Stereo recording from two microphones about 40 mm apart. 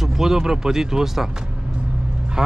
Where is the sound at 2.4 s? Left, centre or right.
Centre.